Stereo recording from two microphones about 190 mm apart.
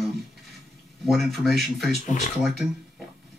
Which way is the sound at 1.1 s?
Centre (ahead or behind).